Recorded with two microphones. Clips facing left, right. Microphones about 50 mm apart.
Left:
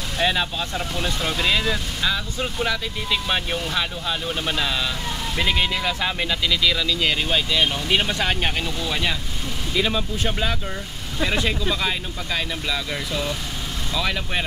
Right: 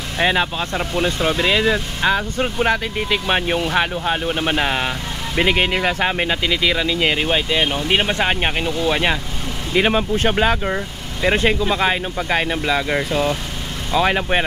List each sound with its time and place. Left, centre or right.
0.2 s speech: right